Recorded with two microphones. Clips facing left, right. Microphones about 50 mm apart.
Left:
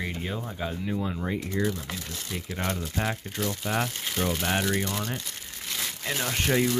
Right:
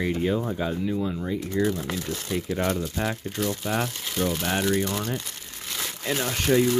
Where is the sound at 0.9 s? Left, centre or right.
Left.